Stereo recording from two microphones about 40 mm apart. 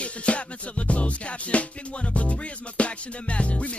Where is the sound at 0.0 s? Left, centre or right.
Left.